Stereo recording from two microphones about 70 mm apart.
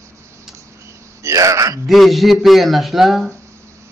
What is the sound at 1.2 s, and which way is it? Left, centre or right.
Speech, right.